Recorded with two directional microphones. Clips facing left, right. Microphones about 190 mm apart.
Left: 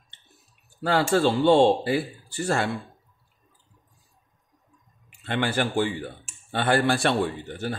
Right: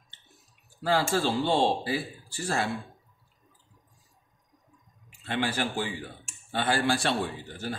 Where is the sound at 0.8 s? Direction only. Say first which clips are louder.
Left 5 dB; 60° left (ahead or behind).